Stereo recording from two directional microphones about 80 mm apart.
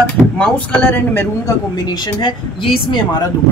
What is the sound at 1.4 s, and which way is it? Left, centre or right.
Speech, left.